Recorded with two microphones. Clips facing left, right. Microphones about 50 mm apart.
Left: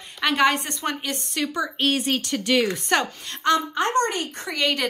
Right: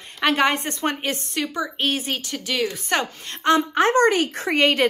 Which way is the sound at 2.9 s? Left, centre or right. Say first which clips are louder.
Even; right.